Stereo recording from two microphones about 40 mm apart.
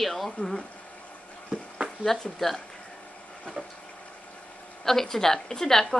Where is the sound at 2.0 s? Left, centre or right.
Centre.